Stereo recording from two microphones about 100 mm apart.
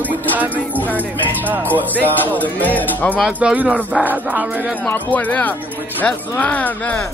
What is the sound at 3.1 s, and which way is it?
Speech, 5° right (ahead or behind).